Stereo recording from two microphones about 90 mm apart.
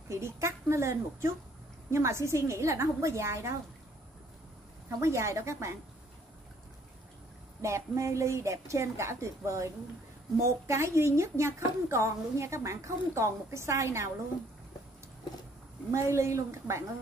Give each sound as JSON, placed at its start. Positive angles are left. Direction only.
{"t": 0.1, "sound": "a woman's voice", "side_deg": -35}
{"t": 4.8, "sound": "a woman's voice", "side_deg": -30}
{"t": 7.6, "sound": "a woman's voice", "side_deg": -35}
{"t": 10.7, "sound": "a woman's voice", "side_deg": -30}
{"t": 15.9, "sound": "a woman's voice", "side_deg": -30}